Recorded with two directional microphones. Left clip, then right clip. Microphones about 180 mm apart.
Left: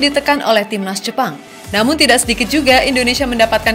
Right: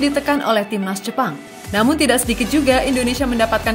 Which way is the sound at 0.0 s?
15° right (ahead or behind).